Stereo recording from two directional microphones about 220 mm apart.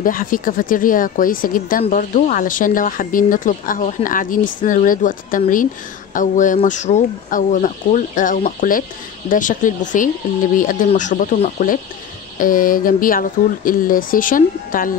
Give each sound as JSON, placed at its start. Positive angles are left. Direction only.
{"t": 0.0, "sound": "speech", "side_deg": 40}